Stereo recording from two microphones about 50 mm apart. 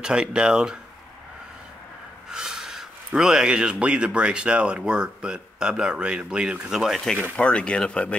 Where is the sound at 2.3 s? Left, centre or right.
Centre.